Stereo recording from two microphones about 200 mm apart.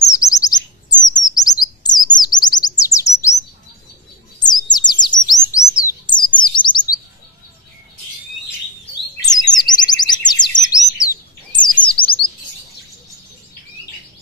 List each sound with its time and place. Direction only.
0.1 s chirp: 15° left (ahead or behind)
4.4 s bird: 20° left (ahead or behind)
9.1 s chirp: 20° left (ahead or behind)
10.7 s bird: 15° left (ahead or behind)
12.0 s chirp: 25° left (ahead or behind)